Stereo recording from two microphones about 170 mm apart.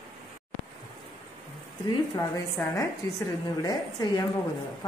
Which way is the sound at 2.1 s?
20° left (ahead or behind).